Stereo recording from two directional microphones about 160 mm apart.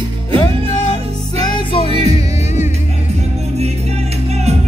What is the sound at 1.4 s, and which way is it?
Music, 30° left (ahead or behind).